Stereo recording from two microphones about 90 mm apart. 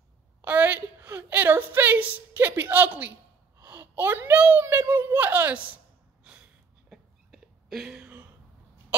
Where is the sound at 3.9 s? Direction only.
25° right (ahead or behind).